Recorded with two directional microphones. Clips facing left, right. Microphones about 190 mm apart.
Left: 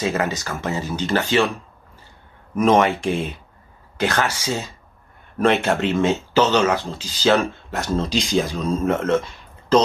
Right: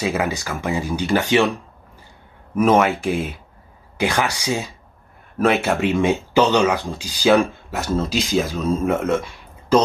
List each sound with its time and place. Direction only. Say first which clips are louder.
0.0 s speech: even; 10° right (ahead or behind)
2.5 s speech: even; 5° right (ahead or behind)